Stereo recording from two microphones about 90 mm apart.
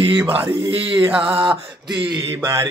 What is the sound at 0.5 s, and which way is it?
Speech, 65° right (ahead or behind).